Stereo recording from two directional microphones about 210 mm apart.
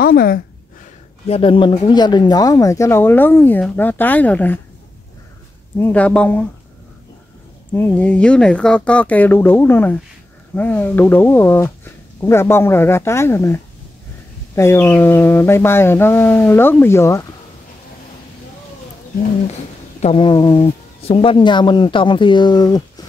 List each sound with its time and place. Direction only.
0.0 s a woman's voice: 45° left (ahead or behind)
1.2 s speech: 25° left (ahead or behind); by 4.6 s 10° left (ahead or behind)
5.8 s speech: 10° left (ahead or behind)
7.7 s speech: 10° left (ahead or behind)
20.0 s speech: 25° left (ahead or behind)